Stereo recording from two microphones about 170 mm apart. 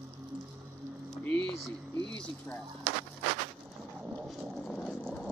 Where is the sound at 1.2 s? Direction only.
5° left (ahead or behind).